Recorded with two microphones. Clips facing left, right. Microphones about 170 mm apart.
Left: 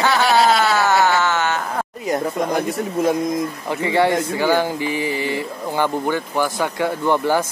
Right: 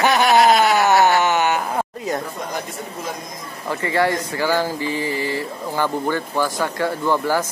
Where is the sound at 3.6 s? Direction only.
20° left (ahead or behind).